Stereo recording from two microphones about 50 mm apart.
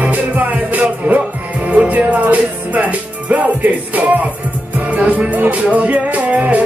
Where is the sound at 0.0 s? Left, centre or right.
Right.